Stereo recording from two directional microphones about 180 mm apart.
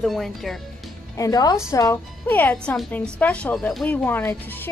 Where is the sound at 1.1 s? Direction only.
20° left (ahead or behind).